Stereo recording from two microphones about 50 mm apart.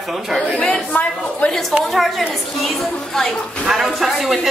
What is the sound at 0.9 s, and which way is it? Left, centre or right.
Speech, left.